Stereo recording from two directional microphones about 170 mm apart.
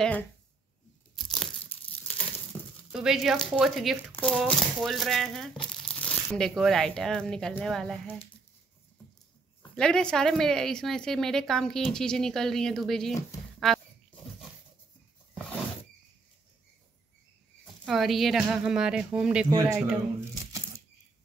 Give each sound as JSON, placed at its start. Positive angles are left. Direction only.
{"t": 0.0, "sound": "speech", "side_deg": 10}
{"t": 1.1, "sound": "tearing", "side_deg": 0}
{"t": 1.7, "sound": "crumpling", "side_deg": 10}
{"t": 2.9, "sound": "speech", "side_deg": -5}
{"t": 9.8, "sound": "speech", "side_deg": 5}
{"t": 17.8, "sound": "speech", "side_deg": 0}
{"t": 19.5, "sound": "speech", "side_deg": -20}